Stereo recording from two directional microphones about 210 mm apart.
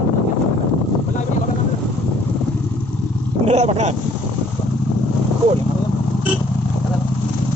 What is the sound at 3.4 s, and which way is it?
Dog, 30° right (ahead or behind).